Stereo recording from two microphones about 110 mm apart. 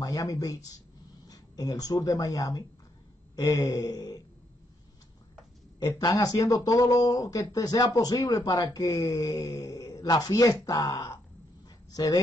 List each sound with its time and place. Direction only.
0.0 s speech: 30° left (ahead or behind)
5.8 s speech: 35° left (ahead or behind)